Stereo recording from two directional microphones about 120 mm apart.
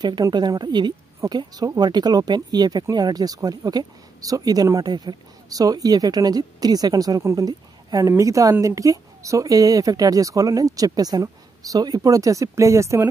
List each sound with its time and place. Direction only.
0.0 s a woman's voice: 35° right (ahead or behind)